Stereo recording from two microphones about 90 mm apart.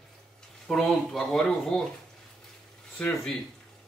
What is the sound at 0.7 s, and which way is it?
Speech, 5° left (ahead or behind).